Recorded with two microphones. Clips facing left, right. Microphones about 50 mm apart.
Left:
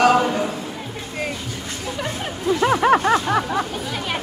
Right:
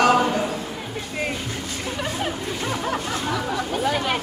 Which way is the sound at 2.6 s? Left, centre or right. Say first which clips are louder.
Left 13 dB; left.